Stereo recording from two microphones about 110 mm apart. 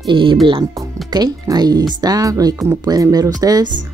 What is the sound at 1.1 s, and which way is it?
Speech, 40° right (ahead or behind).